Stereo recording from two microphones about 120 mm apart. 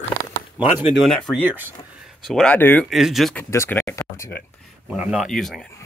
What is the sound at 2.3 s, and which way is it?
Speech, 5° left (ahead or behind).